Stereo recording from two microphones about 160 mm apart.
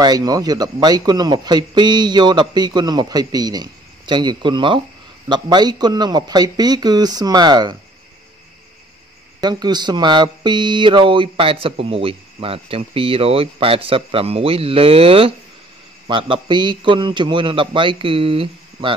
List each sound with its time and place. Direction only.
0.0 s a man's voice: 25° right (ahead or behind)
9.4 s speech: 25° right (ahead or behind)